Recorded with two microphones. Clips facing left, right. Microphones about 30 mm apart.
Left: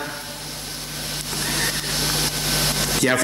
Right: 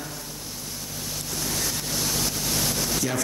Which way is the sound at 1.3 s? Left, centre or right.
Left.